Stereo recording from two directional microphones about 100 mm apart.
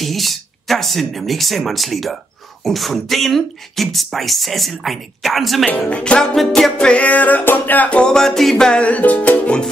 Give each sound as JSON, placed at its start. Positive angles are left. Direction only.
{"t": 0.0, "sound": "speech", "side_deg": 0}
{"t": 5.7, "sound": "music", "side_deg": 15}